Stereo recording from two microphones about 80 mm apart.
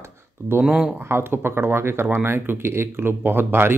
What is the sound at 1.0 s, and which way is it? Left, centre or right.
Speech, right.